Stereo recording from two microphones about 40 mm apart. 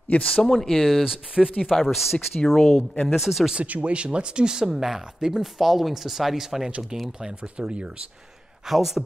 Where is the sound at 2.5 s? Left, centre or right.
Centre.